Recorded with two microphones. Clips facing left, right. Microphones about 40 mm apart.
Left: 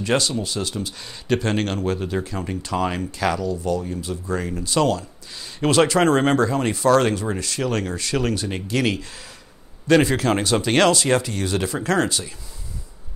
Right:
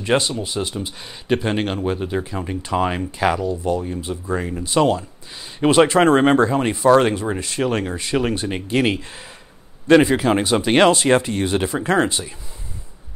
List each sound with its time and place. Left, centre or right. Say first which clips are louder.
0.0 s speech: right 2 dB; centre
9.8 s speech: right 3 dB; centre